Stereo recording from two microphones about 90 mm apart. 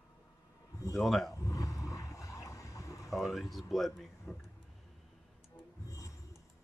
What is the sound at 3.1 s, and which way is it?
Speech, centre (ahead or behind).